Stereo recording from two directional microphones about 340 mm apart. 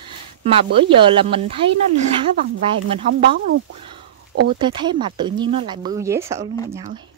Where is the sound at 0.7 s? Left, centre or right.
Centre.